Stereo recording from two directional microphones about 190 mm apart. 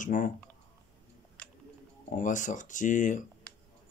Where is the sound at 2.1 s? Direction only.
40° left (ahead or behind).